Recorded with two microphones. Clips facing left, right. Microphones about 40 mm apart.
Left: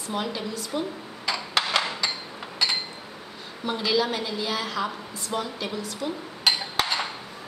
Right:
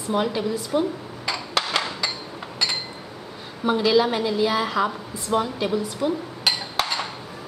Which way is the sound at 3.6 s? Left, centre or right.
Centre.